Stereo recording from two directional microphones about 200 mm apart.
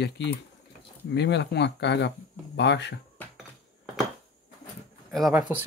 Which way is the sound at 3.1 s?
Centre (ahead or behind).